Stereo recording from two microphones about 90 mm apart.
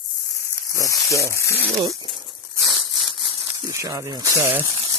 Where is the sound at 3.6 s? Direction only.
40° right (ahead or behind).